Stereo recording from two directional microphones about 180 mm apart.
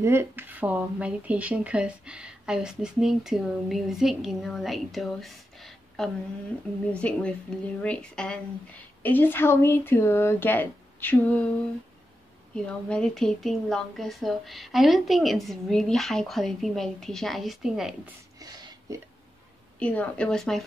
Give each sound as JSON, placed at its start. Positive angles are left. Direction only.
{"t": 0.0, "sound": "speech", "side_deg": -15}
{"t": 12.6, "sound": "speech", "side_deg": 5}
{"t": 18.4, "sound": "a sound", "side_deg": -20}
{"t": 19.8, "sound": "speech", "side_deg": 10}